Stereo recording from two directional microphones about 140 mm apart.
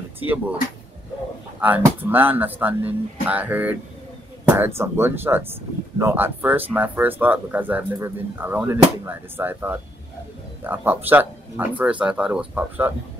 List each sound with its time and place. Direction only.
0.2 s speech: 10° right (ahead or behind)
2.0 s speech: 15° right (ahead or behind)